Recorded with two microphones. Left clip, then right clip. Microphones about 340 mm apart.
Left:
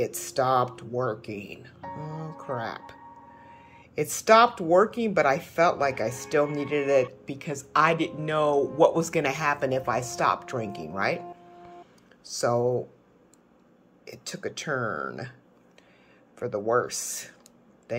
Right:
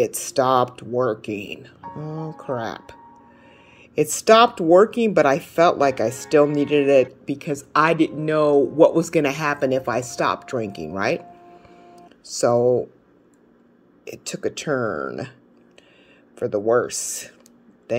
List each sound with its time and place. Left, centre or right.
0.1 s speech: centre
3.4 s a sound: right
4.2 s speech: centre
14.2 s speech: right
16.3 s speech: centre